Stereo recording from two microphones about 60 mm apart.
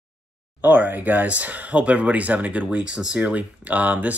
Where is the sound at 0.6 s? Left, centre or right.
Right.